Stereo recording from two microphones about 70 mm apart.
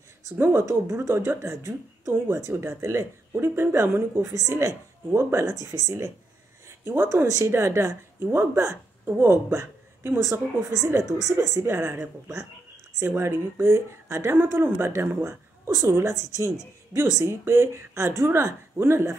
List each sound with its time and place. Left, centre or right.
0.4 s speech: right
2.1 s speech: right
4.3 s speech: right
5.7 s speech: right
6.7 s a sound: right
7.2 s speech: right